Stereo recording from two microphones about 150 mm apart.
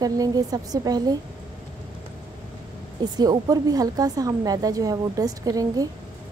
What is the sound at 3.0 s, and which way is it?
A woman's voice, 25° right (ahead or behind).